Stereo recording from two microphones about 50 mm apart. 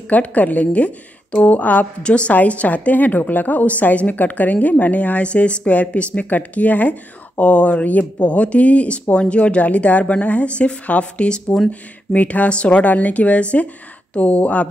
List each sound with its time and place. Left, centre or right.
0.1 s a woman's voice: left
2.0 s a woman's voice: left